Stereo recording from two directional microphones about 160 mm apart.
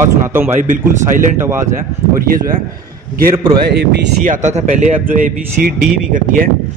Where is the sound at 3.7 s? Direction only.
90° right.